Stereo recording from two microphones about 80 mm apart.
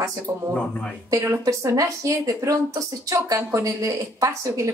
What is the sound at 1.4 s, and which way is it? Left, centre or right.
Speech, right.